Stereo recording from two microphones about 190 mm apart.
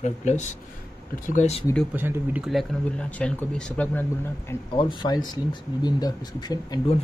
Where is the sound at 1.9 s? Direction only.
10° right (ahead or behind); by 4.0 s 5° left (ahead or behind).